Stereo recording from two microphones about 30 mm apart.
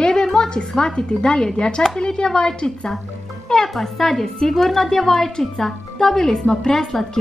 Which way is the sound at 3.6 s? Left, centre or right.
Centre.